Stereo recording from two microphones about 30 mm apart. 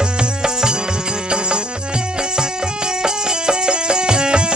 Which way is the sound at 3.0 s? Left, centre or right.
Right.